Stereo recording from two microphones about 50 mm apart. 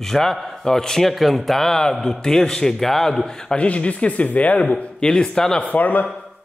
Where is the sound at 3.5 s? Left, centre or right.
Left.